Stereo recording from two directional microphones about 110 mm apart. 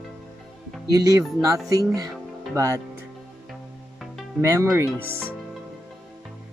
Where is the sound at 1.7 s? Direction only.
35° right (ahead or behind).